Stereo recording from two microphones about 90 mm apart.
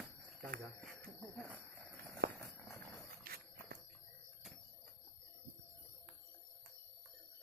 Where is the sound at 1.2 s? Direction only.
15° right (ahead or behind).